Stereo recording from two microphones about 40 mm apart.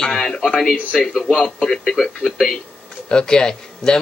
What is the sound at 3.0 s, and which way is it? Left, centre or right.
Speech, left.